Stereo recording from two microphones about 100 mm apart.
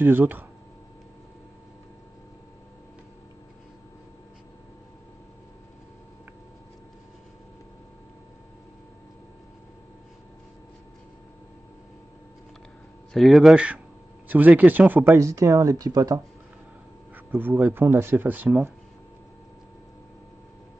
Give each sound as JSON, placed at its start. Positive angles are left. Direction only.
{"t": 0.0, "sound": "speech", "side_deg": -20}
{"t": 13.1, "sound": "speech", "side_deg": 0}
{"t": 14.6, "sound": "speech", "side_deg": -15}
{"t": 15.1, "sound": "speech", "side_deg": -30}
{"t": 17.1, "sound": "speech", "side_deg": -20}